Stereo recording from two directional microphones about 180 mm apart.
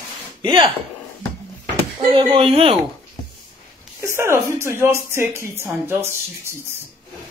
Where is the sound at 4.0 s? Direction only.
15° right (ahead or behind).